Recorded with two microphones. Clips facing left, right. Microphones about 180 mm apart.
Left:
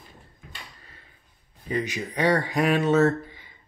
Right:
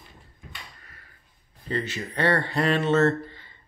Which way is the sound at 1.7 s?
15° left (ahead or behind).